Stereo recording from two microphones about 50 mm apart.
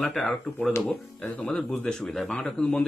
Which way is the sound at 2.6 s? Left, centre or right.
Left.